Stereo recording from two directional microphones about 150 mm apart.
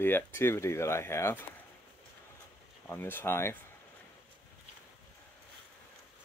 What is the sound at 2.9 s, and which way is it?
Speech, 15° left (ahead or behind).